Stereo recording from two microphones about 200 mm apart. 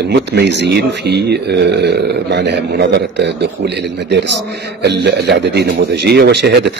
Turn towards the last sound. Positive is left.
turn(degrees=-55)  # may be behind; listen again after turning